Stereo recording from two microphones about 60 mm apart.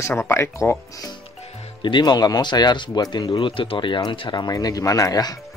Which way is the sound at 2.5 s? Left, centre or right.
Left.